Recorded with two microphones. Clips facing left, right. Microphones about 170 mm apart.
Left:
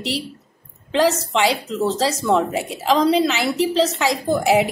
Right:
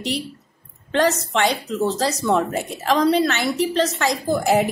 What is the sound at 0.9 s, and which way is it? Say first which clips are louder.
A woman's voice: left 1 dB; centre (ahead or behind).